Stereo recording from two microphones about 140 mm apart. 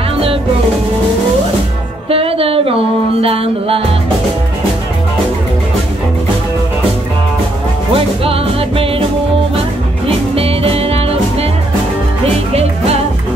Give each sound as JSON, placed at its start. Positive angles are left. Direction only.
{"t": 2.0, "sound": "music", "side_deg": -45}
{"t": 7.9, "sound": "music", "side_deg": -40}
{"t": 10.0, "sound": "music", "side_deg": -45}